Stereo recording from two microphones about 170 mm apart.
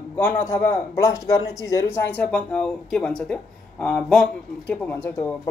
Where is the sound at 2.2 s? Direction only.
5° left (ahead or behind).